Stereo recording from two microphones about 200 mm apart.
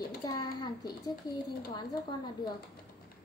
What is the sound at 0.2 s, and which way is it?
A child's voice, 20° left (ahead or behind).